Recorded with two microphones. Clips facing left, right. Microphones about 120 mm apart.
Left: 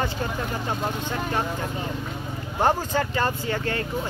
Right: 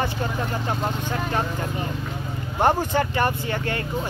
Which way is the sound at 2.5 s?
20° right (ahead or behind).